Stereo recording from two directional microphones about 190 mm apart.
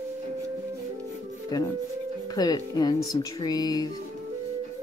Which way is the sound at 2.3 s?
20° left (ahead or behind).